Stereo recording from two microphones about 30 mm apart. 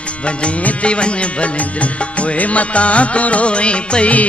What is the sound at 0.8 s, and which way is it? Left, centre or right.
Speech, left.